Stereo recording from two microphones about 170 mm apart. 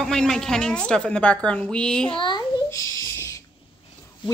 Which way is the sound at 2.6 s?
15° left (ahead or behind).